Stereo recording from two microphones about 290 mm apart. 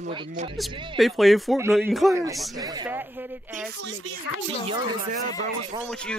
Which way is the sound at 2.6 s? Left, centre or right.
Centre.